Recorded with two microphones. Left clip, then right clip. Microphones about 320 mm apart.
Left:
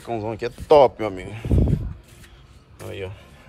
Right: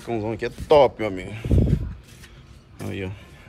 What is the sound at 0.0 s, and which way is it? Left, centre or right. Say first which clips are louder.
Speech: even; centre.